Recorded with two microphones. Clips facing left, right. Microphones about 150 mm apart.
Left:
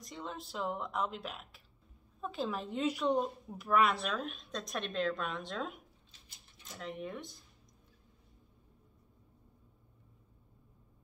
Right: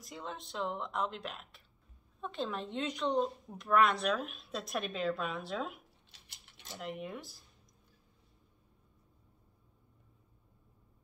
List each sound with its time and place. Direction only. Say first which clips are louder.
0.0 s speech: even; centre (ahead or behind)
6.1 s a sound: right 1 dB; 75° right (ahead or behind)
6.8 s speech: even; 5° right (ahead or behind)